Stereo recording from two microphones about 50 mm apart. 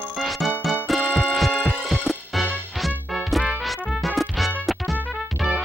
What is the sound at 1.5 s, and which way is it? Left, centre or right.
Music, centre.